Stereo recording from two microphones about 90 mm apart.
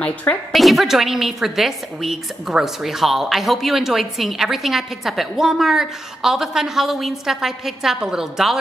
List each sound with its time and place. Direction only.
0.0 s a woman's voice: 15° left (ahead or behind)
0.5 s a woman's voice: centre (ahead or behind)